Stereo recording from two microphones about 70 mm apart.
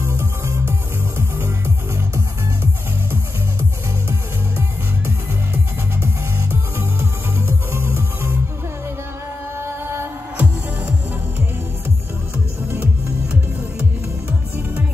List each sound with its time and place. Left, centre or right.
0.0 s music: right
9.6 s music: right
10.4 s music: right